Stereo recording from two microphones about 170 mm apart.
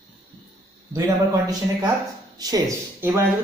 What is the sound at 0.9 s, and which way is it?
Speech, 20° right (ahead or behind).